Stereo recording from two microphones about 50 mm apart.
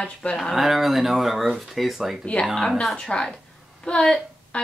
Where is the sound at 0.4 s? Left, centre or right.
Centre.